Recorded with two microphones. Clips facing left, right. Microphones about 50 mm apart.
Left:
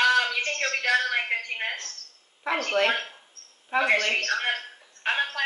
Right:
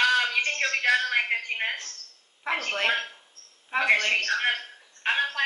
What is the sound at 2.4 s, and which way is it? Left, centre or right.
A woman's voice, centre.